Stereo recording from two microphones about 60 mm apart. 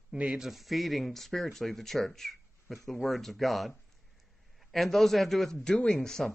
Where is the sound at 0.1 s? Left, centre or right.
Centre.